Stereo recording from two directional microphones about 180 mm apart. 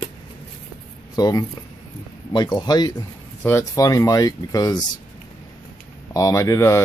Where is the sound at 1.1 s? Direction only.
20° left (ahead or behind).